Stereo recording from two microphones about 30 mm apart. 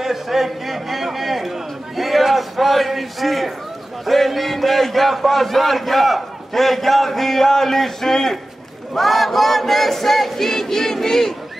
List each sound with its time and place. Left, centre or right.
0.0 s a sound: centre
4.0 s a man's voice: centre
8.9 s battle cry: centre